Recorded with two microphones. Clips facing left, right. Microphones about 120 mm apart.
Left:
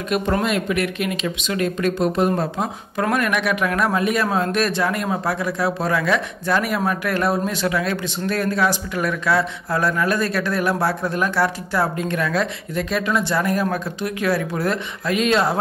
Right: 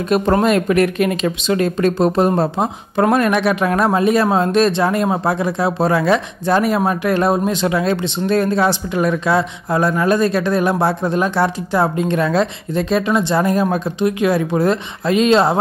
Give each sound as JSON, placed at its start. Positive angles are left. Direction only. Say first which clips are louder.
{"t": 0.1, "sound": "speech", "louder": "right 6 dB", "side_deg": -40}